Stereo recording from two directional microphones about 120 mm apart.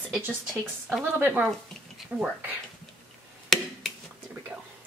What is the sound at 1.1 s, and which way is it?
Speech, 15° right (ahead or behind).